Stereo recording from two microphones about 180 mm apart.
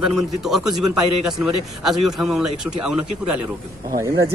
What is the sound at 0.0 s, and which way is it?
A man's voice, centre (ahead or behind).